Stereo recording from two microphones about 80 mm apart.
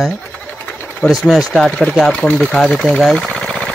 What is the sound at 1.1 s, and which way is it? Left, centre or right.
Speech, centre.